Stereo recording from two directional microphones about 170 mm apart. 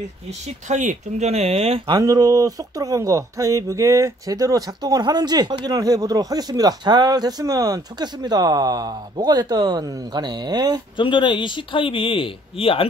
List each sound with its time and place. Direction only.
0.7 s speech: 45° right (ahead or behind)
2.0 s speech: 20° right (ahead or behind)
11.0 s speech: 30° left (ahead or behind)